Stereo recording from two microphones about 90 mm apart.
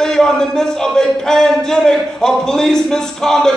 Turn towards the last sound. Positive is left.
turn(degrees=5)  # may be behind; listen again after turning